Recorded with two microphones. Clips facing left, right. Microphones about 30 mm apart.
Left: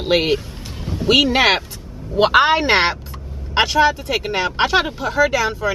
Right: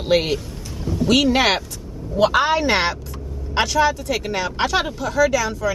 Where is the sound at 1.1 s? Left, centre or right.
Centre.